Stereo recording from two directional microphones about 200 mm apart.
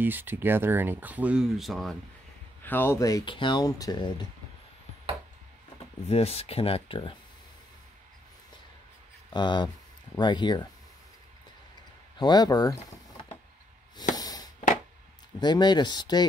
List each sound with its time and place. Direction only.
0.0 s speech: 10° right (ahead or behind); by 4.3 s 20° left (ahead or behind)
6.0 s speech: 30° left (ahead or behind)
9.3 s speech: 20° left (ahead or behind)
12.2 s speech: 20° left (ahead or behind)
14.1 s a sound: 20° left (ahead or behind)
15.4 s speech: 20° left (ahead or behind)